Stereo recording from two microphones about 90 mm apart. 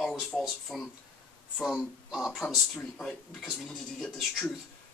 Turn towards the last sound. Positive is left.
turn(degrees=5)  # may be behind; listen again after turning